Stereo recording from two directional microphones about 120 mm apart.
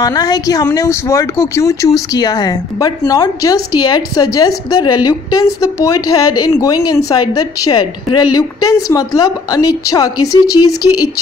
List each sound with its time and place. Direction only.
0.0 s speech: 30° left (ahead or behind)